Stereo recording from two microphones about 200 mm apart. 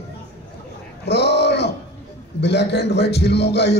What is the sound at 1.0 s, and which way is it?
A man's voice, 55° left (ahead or behind).